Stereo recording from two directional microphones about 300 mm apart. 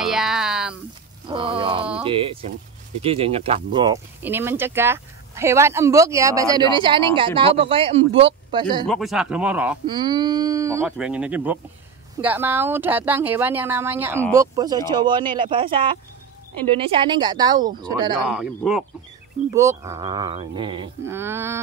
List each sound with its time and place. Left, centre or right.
0.0 s a sound: centre
1.3 s speech: centre
8.8 s speech: centre
18.2 s speech: centre